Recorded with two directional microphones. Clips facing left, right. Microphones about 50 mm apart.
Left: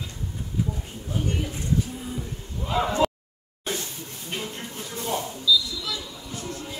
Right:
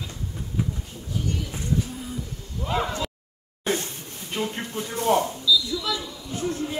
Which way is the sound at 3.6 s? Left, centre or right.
Right.